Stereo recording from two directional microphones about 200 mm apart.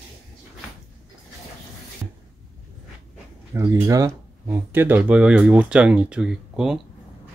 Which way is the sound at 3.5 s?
15° right (ahead or behind).